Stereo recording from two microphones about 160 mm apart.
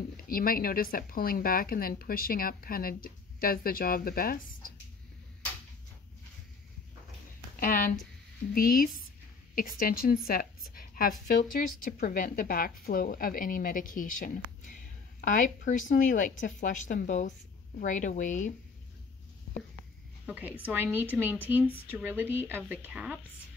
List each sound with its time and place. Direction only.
0.2 s a woman's voice: 65° left (ahead or behind)
7.6 s a woman's voice: 55° left (ahead or behind)
20.2 s a woman's voice: 10° right (ahead or behind)